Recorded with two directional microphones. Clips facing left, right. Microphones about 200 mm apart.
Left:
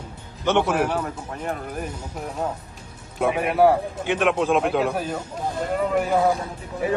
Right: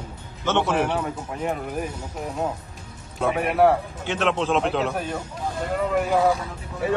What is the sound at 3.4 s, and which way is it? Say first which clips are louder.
Speech: left 1 dB; centre (ahead or behind).